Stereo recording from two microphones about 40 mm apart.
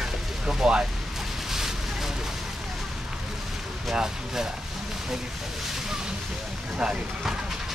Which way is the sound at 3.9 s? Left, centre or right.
Centre.